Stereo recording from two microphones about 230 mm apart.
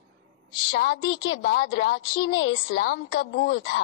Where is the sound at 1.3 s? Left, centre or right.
Left.